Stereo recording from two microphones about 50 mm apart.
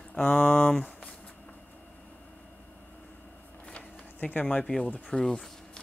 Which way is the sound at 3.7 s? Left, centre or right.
Centre.